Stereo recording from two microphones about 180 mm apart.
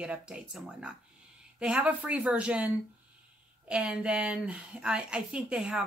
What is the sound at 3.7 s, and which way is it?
Speech, 5° right (ahead or behind).